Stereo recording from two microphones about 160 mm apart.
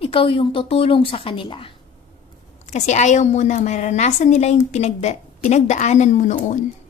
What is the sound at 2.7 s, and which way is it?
A woman's voice, 45° left (ahead or behind).